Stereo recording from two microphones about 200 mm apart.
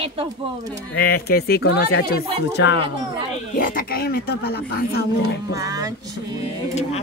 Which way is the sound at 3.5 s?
45° left (ahead or behind).